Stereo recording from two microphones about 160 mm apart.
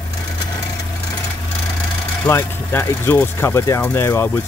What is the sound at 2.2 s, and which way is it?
Speech, 15° left (ahead or behind).